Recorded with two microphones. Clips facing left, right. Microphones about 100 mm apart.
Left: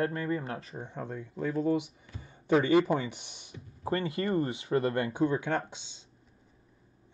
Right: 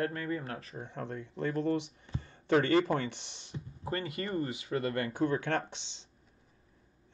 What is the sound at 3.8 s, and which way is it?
Speech, 25° left (ahead or behind).